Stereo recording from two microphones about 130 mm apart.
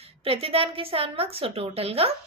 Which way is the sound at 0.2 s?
45° right (ahead or behind).